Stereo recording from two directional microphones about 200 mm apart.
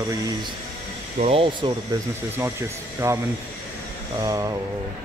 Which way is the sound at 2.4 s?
15° right (ahead or behind).